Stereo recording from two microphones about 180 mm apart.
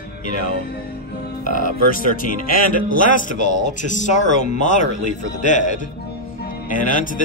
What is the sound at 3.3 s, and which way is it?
A man's voice, 45° left (ahead or behind).